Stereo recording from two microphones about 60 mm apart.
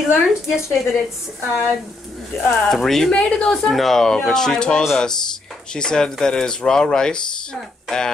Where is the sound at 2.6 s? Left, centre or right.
Centre.